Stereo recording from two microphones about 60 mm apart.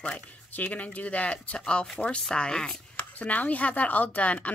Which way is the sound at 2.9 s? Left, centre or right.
Left.